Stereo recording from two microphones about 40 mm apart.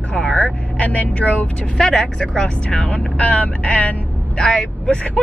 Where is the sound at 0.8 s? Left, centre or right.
Left.